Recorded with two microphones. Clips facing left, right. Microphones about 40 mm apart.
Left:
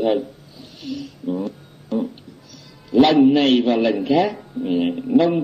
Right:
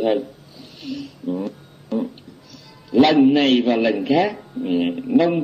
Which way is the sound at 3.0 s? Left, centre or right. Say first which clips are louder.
Even; centre.